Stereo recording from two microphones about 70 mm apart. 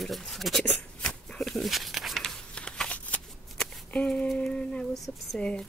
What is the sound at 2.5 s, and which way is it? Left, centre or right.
Shuffling cards, centre.